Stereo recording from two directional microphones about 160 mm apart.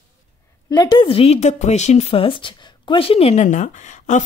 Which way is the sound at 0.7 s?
30° left (ahead or behind).